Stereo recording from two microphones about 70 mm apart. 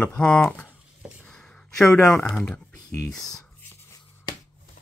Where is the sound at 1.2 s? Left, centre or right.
Centre.